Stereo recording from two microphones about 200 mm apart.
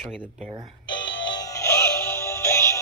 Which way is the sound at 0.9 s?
20° left (ahead or behind).